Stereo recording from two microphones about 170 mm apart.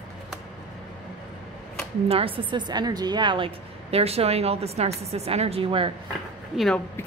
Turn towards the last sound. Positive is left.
turn(degrees=5)  # may be behind; listen again after turning